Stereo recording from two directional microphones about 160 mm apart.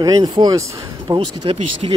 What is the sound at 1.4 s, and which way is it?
Speech, 40° right (ahead or behind).